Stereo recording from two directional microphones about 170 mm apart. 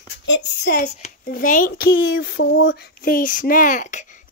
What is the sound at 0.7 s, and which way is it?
A child's voice, 45° left (ahead or behind).